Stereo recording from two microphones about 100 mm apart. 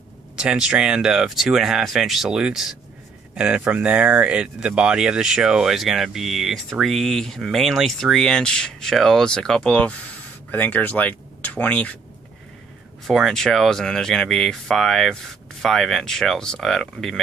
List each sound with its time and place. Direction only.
0.4 s speech: 10° right (ahead or behind); by 12.0 s 15° left (ahead or behind)
13.0 s speech: centre (ahead or behind)